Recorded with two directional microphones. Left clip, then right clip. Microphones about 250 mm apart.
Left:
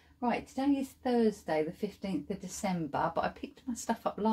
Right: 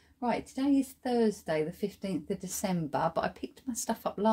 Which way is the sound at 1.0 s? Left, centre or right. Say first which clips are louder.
Left 3 dB; right.